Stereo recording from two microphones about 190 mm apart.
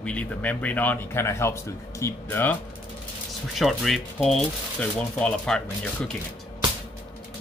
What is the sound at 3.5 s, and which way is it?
Speech, centre (ahead or behind).